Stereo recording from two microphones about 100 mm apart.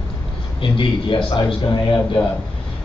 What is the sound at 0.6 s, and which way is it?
Speech, 60° left (ahead or behind).